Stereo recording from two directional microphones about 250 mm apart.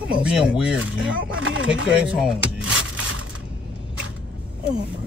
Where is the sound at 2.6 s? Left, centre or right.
Right.